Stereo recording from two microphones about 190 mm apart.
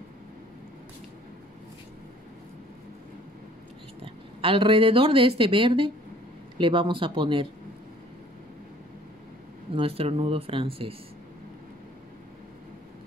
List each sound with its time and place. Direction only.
4.0 s speech: 30° right (ahead or behind)
9.8 s speech: 30° right (ahead or behind)